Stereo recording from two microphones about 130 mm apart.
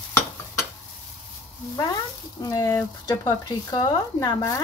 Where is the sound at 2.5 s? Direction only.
25° left (ahead or behind).